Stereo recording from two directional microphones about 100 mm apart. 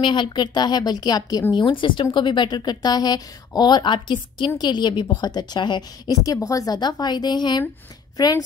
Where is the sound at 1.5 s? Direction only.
55° left (ahead or behind).